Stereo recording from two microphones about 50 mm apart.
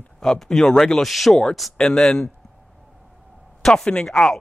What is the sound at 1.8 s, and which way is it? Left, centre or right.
Speech, centre.